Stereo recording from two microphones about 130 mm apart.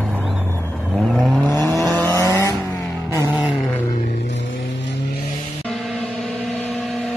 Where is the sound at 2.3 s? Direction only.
25° left (ahead or behind).